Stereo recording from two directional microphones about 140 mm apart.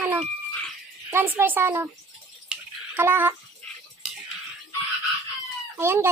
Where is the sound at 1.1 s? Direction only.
15° right (ahead or behind).